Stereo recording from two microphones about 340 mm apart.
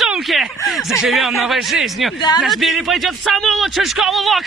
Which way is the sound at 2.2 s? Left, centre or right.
Centre.